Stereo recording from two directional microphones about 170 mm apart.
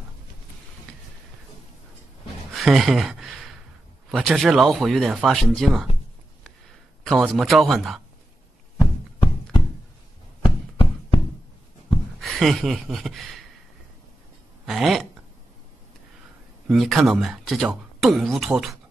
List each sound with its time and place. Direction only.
2.5 s speech: centre (ahead or behind)
7.1 s speech: centre (ahead or behind)
8.7 s music: 30° left (ahead or behind)
10.4 s a sound: 30° left (ahead or behind)
12.2 s speech: centre (ahead or behind)
14.7 s speech: centre (ahead or behind)
16.6 s speech: centre (ahead or behind)